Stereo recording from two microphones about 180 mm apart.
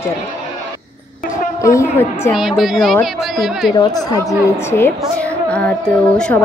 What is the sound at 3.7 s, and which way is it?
A woman's voice, 20° left (ahead or behind).